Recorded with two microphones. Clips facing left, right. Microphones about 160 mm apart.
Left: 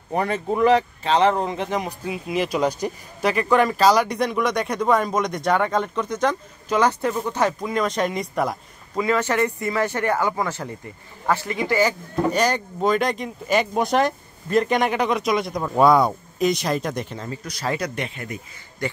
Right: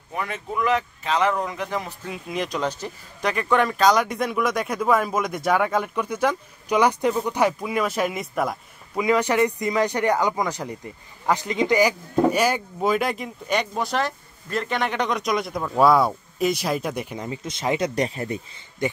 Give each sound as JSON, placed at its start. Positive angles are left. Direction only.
{"t": 0.1, "sound": "speech", "side_deg": 35}
{"t": 2.0, "sound": "speech", "side_deg": 5}
{"t": 8.9, "sound": "speech", "side_deg": -15}
{"t": 13.7, "sound": "speech", "side_deg": 20}
{"t": 17.9, "sound": "speech", "side_deg": -35}
{"t": 18.8, "sound": "speech", "side_deg": -20}